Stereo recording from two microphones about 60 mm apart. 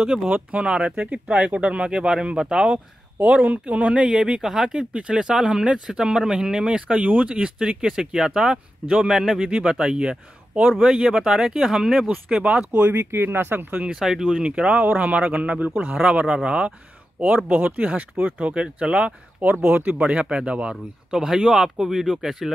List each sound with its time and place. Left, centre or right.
0.0 s speech: centre
0.3 s speech: right
3.2 s speech: right
4.1 s speech: centre
10.8 s speech: centre
12.7 s speech: right
13.9 s speech: centre
14.2 s speech: centre
15.9 s speech: centre
17.5 s speech: right
19.4 s speech: right
20.1 s speech: centre